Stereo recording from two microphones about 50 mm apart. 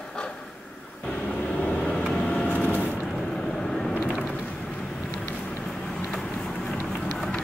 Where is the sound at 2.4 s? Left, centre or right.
Left.